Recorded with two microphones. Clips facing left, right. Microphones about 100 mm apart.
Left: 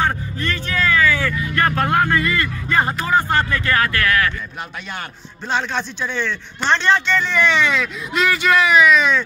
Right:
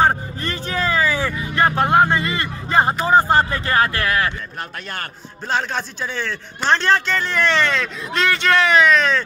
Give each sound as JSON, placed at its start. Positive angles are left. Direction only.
{"t": 0.0, "sound": "vehicle", "side_deg": -35}
{"t": 3.1, "sound": "speech", "side_deg": -30}
{"t": 5.5, "sound": "a man's voice", "side_deg": -5}